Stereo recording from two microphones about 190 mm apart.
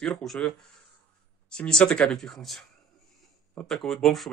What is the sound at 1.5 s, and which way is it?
Speech, 5° left (ahead or behind).